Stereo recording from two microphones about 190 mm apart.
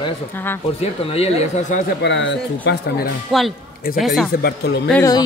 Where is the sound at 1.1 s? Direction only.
30° left (ahead or behind).